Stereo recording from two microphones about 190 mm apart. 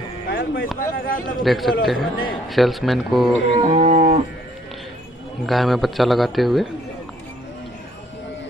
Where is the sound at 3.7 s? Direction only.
40° right (ahead or behind).